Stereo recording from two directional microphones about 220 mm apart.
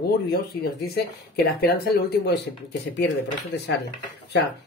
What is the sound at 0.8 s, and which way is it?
Speech, 45° left (ahead or behind).